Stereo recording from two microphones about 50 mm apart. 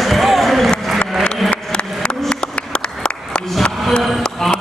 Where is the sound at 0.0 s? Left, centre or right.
Centre.